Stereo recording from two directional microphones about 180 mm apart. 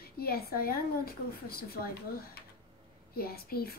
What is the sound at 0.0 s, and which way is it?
Speech, 60° left (ahead or behind).